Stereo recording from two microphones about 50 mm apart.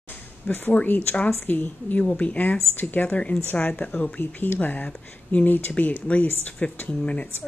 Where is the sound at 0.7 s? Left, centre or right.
Left.